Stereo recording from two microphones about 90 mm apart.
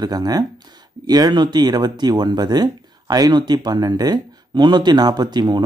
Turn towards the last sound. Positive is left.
turn(degrees=-50)  # may be behind; listen again after turning